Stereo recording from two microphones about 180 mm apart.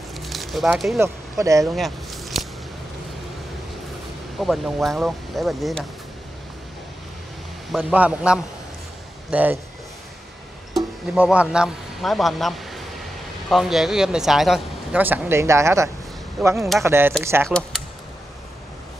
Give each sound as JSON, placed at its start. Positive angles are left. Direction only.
{"t": 0.1, "sound": "a sound", "side_deg": 0}
{"t": 1.4, "sound": "a man's voice", "side_deg": -15}
{"t": 1.8, "sound": "a sound", "side_deg": 0}
{"t": 4.4, "sound": "speech", "side_deg": 0}
{"t": 7.7, "sound": "a man's voice", "side_deg": -5}
{"t": 10.7, "sound": "speech", "side_deg": 0}
{"t": 16.4, "sound": "speech", "side_deg": 0}
{"t": 16.8, "sound": "a man's voice", "side_deg": -15}
{"t": 17.5, "sound": "speech", "side_deg": 5}